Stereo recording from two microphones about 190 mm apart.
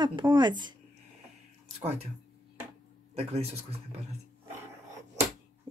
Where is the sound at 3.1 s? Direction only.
30° right (ahead or behind).